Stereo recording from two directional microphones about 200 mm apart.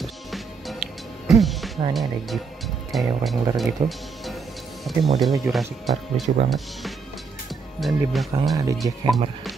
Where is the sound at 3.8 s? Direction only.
25° right (ahead or behind).